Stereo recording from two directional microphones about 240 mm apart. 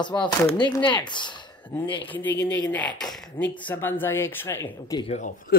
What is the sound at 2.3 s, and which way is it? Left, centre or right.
Speech, left.